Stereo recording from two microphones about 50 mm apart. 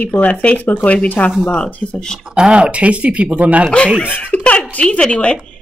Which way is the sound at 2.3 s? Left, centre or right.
Centre.